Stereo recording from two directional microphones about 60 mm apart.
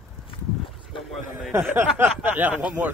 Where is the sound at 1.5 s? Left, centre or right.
Right.